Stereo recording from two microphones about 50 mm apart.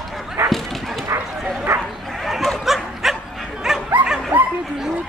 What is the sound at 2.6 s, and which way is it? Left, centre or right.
Dog, centre.